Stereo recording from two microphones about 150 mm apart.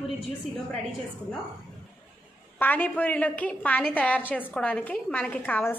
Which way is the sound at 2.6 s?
10° left (ahead or behind).